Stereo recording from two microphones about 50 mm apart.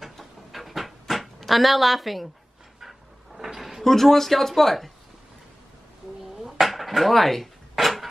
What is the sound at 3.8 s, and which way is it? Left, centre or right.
Speech, centre.